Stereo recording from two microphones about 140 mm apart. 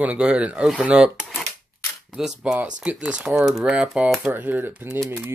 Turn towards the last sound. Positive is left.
turn(degrees=-20)  # may be behind; listen again after turning